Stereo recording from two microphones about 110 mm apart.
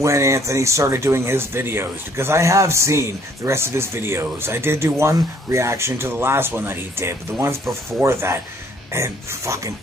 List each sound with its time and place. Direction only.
0.0 s speech: 25° right (ahead or behind)